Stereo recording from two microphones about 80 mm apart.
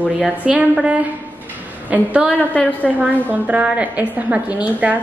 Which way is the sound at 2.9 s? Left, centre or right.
Centre.